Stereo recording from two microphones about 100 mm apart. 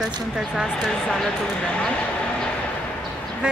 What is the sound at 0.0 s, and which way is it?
Speech, 5° right (ahead or behind).